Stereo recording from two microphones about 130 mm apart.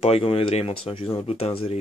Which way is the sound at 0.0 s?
50° left (ahead or behind).